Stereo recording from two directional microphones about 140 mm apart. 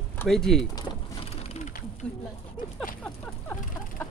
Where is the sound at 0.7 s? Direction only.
25° left (ahead or behind).